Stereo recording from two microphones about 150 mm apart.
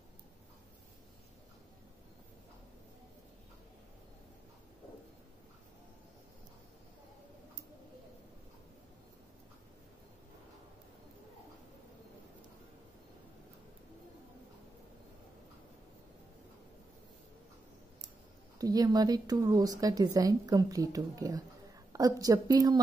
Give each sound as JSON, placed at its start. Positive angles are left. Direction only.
{"t": 18.6, "sound": "a woman's voice", "side_deg": -25}